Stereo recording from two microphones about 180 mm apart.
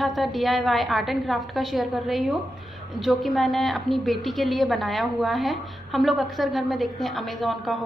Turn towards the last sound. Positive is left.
turn(degrees=0)  # may be behind; listen again after turning